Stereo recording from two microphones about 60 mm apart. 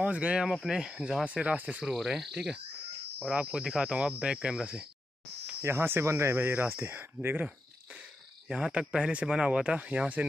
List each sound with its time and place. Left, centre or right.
0.0 s speech: centre
2.0 s speech: centre
3.2 s speech: centre
5.6 s speech: right
8.5 s speech: centre